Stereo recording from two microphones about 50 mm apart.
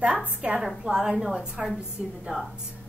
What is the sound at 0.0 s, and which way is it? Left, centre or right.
A woman's voice, right.